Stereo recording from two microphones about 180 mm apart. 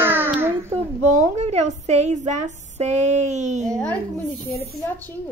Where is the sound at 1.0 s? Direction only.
40° right (ahead or behind).